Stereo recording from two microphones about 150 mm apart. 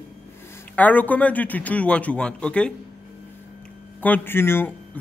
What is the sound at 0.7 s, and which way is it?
A man's voice, 10° left (ahead or behind).